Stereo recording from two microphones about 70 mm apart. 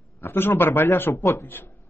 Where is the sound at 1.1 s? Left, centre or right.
Left.